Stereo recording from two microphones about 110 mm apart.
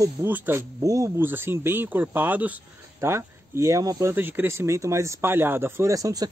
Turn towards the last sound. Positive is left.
turn(degrees=-35)  # may be behind; listen again after turning